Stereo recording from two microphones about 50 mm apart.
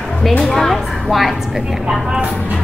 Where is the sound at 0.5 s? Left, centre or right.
Centre.